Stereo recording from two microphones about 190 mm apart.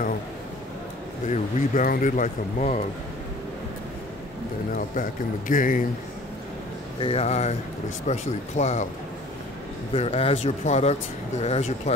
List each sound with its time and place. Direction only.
1.3 s speech: 45° left (ahead or behind)
4.7 s a man's voice: 45° left (ahead or behind)
7.0 s speech: 30° left (ahead or behind)
9.9 s speech: 30° left (ahead or behind)